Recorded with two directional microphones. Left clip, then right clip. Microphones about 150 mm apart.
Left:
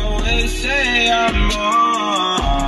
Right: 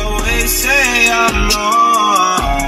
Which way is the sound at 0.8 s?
25° right (ahead or behind).